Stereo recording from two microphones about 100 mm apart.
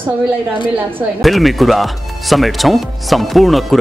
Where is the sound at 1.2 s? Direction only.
Centre (ahead or behind).